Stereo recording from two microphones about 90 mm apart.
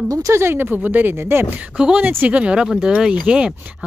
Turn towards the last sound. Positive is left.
turn(degrees=-10)  # may be behind; listen again after turning